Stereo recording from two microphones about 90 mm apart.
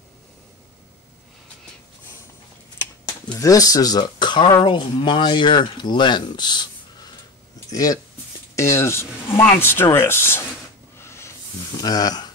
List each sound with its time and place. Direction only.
3.3 s speech: 40° left (ahead or behind)
7.7 s speech: 40° left (ahead or behind)
11.0 s a sound: 30° left (ahead or behind)
11.7 s speech: 45° left (ahead or behind)